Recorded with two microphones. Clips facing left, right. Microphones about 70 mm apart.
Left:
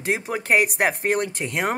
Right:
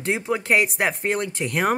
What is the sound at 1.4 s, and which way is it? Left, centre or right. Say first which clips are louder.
Speech: right 3 dB; centre.